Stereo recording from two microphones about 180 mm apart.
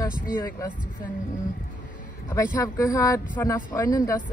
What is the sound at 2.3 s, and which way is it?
Speech, 20° left (ahead or behind).